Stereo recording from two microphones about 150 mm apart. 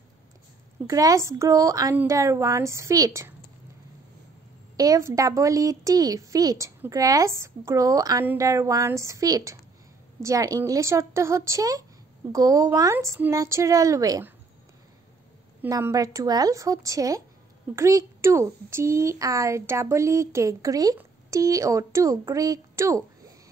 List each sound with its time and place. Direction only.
0.8 s speech: 20° right (ahead or behind)
4.7 s speech: 25° right (ahead or behind)
15.8 s speech: 20° right (ahead or behind)